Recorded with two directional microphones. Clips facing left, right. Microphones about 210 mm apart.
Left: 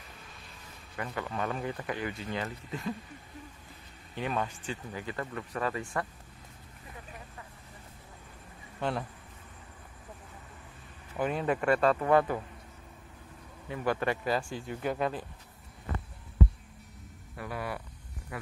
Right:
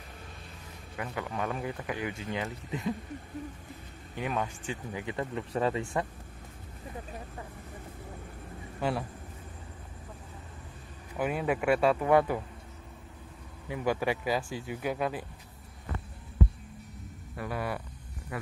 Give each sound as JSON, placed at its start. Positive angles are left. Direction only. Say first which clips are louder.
{"t": 0.9, "sound": "speech", "louder": "even", "side_deg": -5}
{"t": 4.1, "sound": "speech", "louder": "even", "side_deg": -10}
{"t": 8.8, "sound": "speech", "louder": "right 2 dB", "side_deg": -5}
{"t": 11.1, "sound": "speech", "louder": "even", "side_deg": -5}
{"t": 13.7, "sound": "speech", "louder": "right 1 dB", "side_deg": -10}
{"t": 17.4, "sound": "a sound", "louder": "right 3 dB", "side_deg": -45}